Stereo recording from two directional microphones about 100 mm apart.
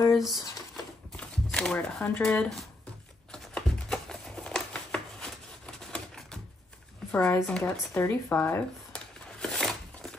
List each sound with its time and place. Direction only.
0.1 s speech: centre (ahead or behind)
1.1 s shuffling cards: 10° left (ahead or behind)
2.1 s speech: 15° left (ahead or behind)
3.3 s a sound: 5° left (ahead or behind)
7.1 s speech: 15° left (ahead or behind)
7.9 s speech: 20° left (ahead or behind)
9.4 s a sound: 5° left (ahead or behind)